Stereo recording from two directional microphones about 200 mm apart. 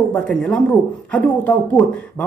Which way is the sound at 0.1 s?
5° left (ahead or behind).